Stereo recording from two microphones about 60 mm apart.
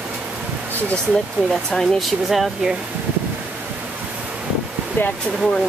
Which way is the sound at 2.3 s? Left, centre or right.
Centre.